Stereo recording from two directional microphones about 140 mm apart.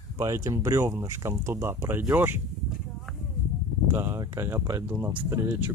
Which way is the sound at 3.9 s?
20° right (ahead or behind).